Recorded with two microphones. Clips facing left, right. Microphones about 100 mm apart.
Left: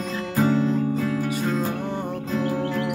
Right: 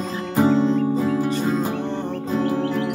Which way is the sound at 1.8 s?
10° left (ahead or behind).